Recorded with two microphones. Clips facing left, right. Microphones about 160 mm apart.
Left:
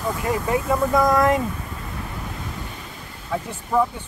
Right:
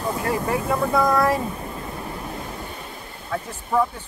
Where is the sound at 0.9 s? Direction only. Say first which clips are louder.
Left 1 dB; 15° left (ahead or behind).